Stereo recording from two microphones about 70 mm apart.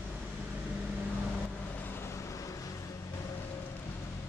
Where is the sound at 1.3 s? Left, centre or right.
Centre.